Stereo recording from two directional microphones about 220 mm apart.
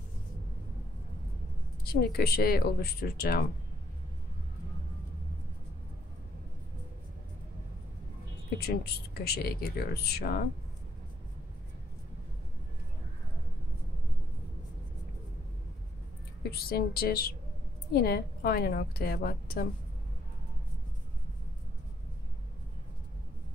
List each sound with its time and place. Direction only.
1.9 s speech: 45° left (ahead or behind)
8.5 s speech: 45° left (ahead or behind)
16.4 s speech: 45° left (ahead or behind)